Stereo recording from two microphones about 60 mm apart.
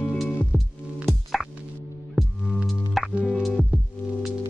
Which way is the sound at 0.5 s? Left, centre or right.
Right.